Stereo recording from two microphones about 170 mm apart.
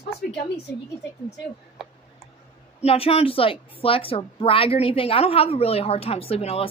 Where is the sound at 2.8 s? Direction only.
35° left (ahead or behind).